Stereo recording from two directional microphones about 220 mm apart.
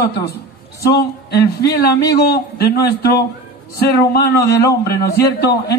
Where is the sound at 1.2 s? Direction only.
45° left (ahead or behind).